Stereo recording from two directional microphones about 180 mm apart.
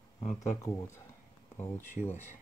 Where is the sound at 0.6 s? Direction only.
15° left (ahead or behind).